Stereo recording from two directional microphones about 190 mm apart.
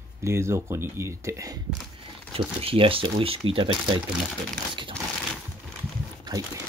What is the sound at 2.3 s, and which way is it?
Speech, 30° right (ahead or behind).